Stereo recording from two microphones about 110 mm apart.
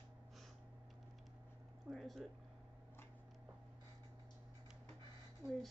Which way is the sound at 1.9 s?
Centre (ahead or behind).